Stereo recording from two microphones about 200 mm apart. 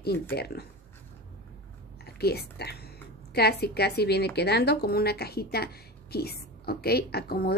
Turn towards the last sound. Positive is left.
turn(degrees=50)  # may be behind; listen again after turning